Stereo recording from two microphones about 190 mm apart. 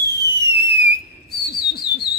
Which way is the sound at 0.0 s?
60° right (ahead or behind).